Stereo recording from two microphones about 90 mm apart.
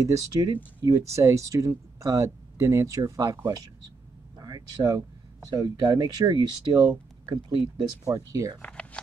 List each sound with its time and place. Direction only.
0.0 s speech: 35° right (ahead or behind)
4.4 s speech: 45° right (ahead or behind)
8.3 s speech: 40° right (ahead or behind)
8.5 s a sound: 15° left (ahead or behind)